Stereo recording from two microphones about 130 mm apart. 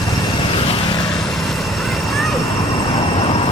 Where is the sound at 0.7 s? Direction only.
35° left (ahead or behind).